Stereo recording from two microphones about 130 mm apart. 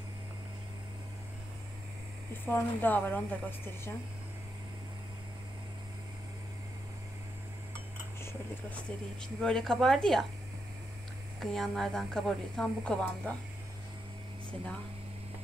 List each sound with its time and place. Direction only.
2.3 s speech: 15° left (ahead or behind)
8.2 s a sound: 20° left (ahead or behind)
9.4 s speech: 5° left (ahead or behind)
11.3 s speech: 5° left (ahead or behind)